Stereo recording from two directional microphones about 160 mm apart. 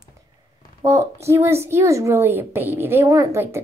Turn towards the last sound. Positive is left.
turn(degrees=-15)  # may be behind; listen again after turning